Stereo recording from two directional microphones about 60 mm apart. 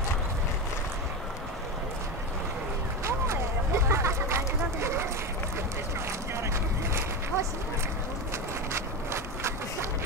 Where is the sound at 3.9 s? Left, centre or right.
Right.